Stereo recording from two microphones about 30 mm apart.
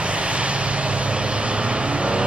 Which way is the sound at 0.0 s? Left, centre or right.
Right.